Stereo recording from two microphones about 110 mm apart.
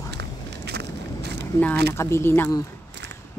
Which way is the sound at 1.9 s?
25° left (ahead or behind).